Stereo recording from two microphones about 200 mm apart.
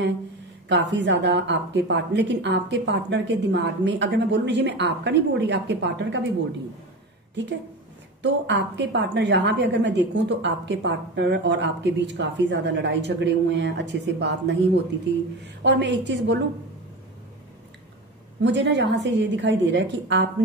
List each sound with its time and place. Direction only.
0.7 s a woman's voice: 60° right (ahead or behind)
8.2 s a woman's voice: 60° right (ahead or behind)
18.4 s a woman's voice: 60° right (ahead or behind)